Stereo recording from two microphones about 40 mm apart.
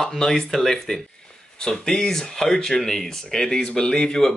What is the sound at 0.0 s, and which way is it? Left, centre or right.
Speech, centre.